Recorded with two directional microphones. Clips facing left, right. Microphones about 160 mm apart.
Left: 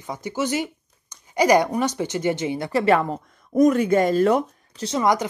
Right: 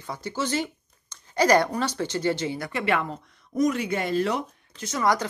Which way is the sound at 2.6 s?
35° left (ahead or behind).